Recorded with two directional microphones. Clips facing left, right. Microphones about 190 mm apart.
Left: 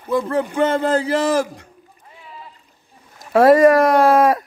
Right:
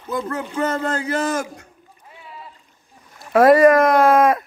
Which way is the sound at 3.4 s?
35° left (ahead or behind).